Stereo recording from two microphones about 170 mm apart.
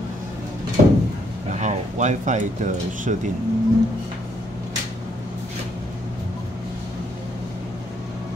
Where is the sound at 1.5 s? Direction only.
45° right (ahead or behind).